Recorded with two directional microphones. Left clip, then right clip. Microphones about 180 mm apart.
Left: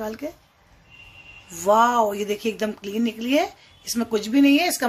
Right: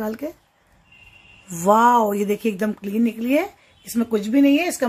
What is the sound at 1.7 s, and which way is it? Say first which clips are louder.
Speech: right 2 dB; 65° right (ahead or behind).